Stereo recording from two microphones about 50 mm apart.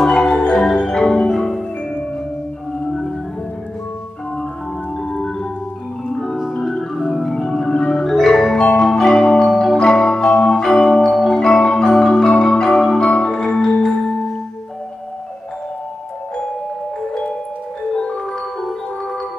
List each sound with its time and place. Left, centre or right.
0.0 s marimba: centre
6.0 s music: centre
6.3 s marimba: centre
8.5 s music: centre
17.9 s music: centre